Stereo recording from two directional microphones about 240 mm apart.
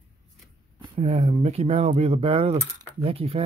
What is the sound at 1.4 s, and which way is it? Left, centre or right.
Speech, right.